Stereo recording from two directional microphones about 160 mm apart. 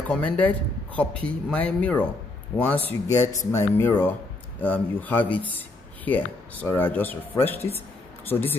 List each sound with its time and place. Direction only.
0.1 s a man's voice: 10° left (ahead or behind)